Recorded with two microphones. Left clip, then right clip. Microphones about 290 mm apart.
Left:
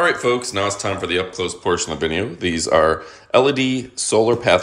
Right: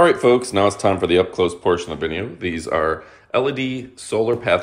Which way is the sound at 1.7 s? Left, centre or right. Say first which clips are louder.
Even; centre.